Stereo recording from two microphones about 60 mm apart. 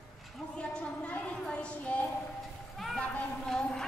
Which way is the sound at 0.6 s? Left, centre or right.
Left.